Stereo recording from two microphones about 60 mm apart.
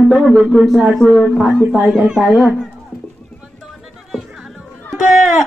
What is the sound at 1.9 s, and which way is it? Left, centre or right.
Speech, centre.